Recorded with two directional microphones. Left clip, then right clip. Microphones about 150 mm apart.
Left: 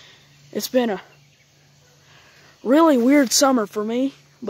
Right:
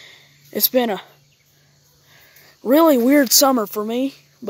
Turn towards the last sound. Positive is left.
turn(degrees=-20)  # may be behind; listen again after turning